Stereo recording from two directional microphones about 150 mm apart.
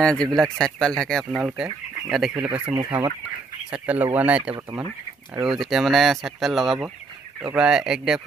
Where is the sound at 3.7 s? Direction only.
10° right (ahead or behind).